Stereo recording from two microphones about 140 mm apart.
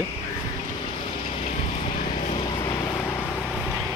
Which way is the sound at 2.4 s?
30° left (ahead or behind).